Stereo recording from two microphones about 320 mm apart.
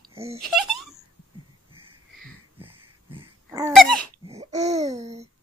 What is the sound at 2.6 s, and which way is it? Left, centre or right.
Wheeze, centre.